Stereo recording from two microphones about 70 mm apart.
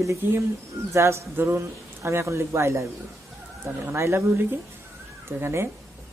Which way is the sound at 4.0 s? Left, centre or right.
Right.